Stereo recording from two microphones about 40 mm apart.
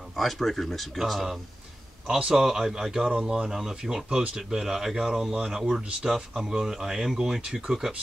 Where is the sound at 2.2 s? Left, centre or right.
Centre.